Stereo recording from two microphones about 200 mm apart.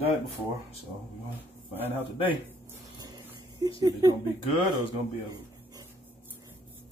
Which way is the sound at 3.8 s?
15° right (ahead or behind).